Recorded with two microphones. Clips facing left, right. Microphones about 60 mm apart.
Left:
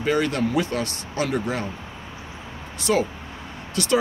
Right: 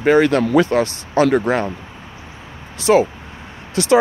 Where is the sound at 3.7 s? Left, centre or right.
Right.